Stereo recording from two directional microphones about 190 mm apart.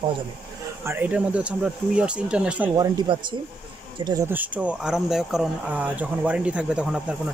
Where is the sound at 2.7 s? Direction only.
20° right (ahead or behind).